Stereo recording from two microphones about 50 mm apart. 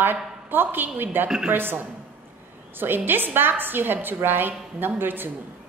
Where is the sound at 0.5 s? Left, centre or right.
Right.